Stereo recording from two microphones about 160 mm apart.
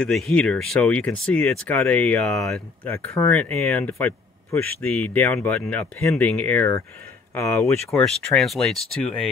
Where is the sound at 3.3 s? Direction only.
5° left (ahead or behind).